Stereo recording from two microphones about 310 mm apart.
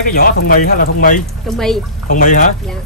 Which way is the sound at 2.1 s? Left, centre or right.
Left.